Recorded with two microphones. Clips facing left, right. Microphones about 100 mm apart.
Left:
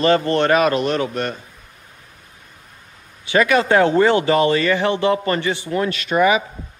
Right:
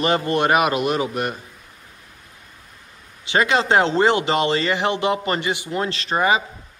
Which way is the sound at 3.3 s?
25° right (ahead or behind).